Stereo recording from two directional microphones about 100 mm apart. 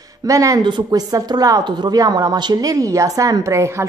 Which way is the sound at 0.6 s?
45° right (ahead or behind).